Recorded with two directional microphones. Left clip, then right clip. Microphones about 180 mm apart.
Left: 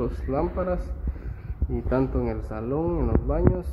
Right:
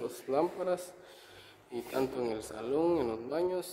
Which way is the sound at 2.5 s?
15° right (ahead or behind).